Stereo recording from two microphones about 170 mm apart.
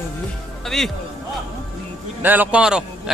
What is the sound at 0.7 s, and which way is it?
Speech, centre (ahead or behind).